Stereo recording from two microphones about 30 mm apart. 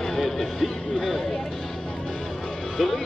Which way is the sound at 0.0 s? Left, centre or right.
Centre.